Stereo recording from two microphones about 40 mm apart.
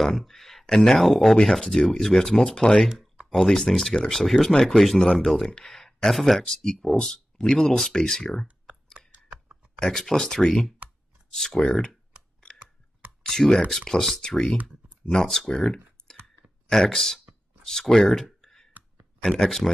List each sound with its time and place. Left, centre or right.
0.0 s speech: centre
2.5 s speech: left
5.7 s a sound: centre
6.1 s speech: centre
6.4 s speech: centre
8.9 s typing: right
9.9 s speech: centre
13.2 s speech: centre
15.5 s computer keyboard: centre
16.6 s speech: centre
18.7 s clicking: right
19.2 s speech: centre